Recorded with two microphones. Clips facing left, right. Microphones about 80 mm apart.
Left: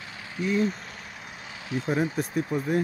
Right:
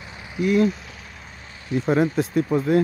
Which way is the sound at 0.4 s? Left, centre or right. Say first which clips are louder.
Right 6 dB; right.